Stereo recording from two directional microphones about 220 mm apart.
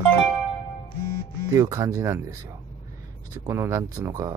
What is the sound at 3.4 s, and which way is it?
Speech, 10° right (ahead or behind).